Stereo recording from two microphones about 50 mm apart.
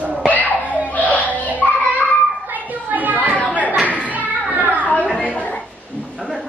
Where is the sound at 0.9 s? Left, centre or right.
Left.